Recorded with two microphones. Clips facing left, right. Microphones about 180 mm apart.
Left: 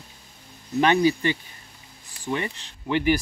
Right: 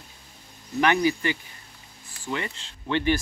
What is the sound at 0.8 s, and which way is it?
Speech, 25° left (ahead or behind).